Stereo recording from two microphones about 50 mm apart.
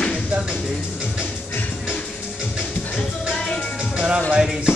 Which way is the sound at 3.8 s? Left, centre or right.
Centre.